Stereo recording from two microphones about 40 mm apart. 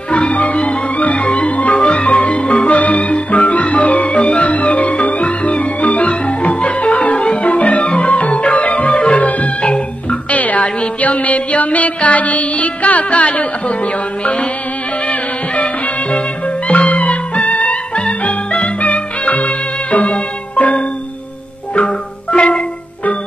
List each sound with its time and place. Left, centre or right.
0.1 s music: left
22.3 s music: left